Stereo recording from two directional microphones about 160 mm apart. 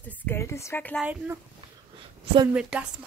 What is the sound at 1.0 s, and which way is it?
Speech, 10° right (ahead or behind).